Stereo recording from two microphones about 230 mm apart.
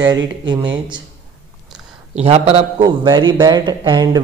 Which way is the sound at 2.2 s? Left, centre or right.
Right.